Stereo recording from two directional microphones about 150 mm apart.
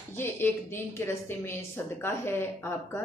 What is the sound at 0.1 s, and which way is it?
A woman's voice, 15° left (ahead or behind).